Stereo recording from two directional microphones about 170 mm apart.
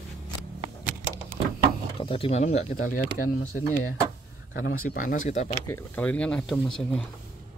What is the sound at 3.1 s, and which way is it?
Speech, 55° left (ahead or behind).